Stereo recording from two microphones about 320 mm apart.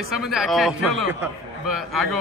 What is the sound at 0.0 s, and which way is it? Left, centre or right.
A man's voice, centre.